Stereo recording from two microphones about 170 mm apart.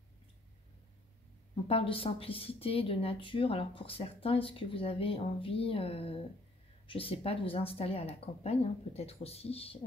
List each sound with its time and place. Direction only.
1.7 s speech: 30° left (ahead or behind)